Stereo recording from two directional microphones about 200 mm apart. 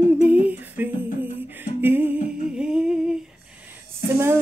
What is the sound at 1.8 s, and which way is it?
Music, 10° right (ahead or behind).